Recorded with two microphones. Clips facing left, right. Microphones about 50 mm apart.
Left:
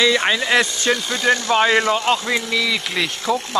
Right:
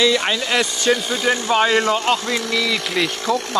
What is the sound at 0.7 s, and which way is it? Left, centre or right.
Speech, centre.